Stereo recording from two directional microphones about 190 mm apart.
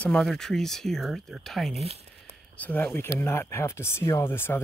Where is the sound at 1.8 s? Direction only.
30° right (ahead or behind).